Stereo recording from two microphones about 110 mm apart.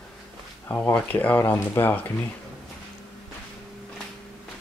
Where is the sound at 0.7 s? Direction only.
15° left (ahead or behind).